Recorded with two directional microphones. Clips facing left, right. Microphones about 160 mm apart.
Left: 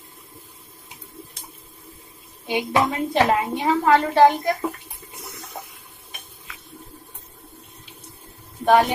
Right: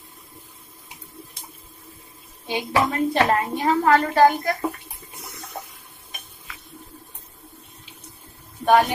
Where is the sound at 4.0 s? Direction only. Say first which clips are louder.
Left 1 dB; 25° left (ahead or behind).